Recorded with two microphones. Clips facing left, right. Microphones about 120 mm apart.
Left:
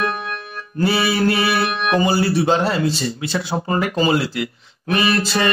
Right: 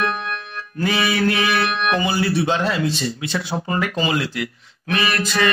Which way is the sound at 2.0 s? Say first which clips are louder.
Left 6 dB; 40° left (ahead or behind).